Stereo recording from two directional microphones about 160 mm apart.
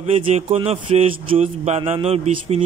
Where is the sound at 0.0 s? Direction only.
40° right (ahead or behind).